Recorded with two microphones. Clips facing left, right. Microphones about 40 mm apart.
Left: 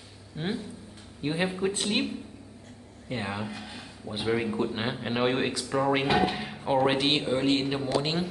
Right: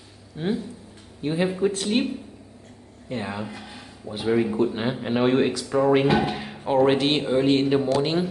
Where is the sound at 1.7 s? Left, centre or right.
Centre.